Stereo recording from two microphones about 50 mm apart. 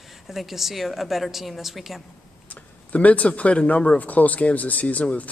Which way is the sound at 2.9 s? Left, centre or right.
Left.